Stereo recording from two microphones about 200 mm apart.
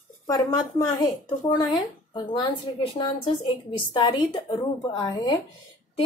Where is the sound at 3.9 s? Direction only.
20° left (ahead or behind).